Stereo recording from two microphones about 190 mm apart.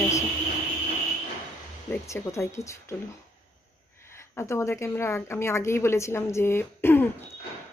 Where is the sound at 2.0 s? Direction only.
15° left (ahead or behind).